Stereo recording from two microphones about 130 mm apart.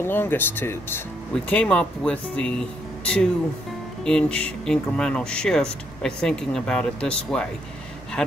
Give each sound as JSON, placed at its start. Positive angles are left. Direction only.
{"t": 0.0, "sound": "speech", "side_deg": 15}